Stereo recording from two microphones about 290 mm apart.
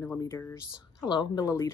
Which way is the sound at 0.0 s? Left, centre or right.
Centre.